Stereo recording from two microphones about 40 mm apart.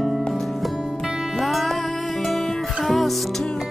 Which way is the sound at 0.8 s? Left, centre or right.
Centre.